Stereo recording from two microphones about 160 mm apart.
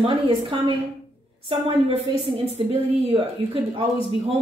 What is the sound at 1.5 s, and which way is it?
Speech, 30° right (ahead or behind).